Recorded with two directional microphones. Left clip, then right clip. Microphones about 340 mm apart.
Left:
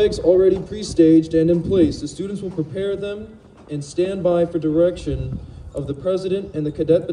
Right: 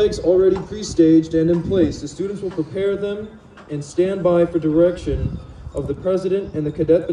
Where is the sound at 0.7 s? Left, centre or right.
Centre.